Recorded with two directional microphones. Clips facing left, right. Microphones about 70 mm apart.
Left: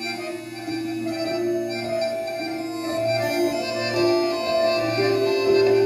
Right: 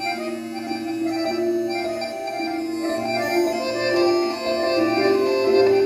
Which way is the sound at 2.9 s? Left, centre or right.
Right.